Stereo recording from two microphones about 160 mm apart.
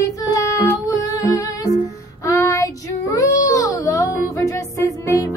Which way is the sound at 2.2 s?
20° left (ahead or behind).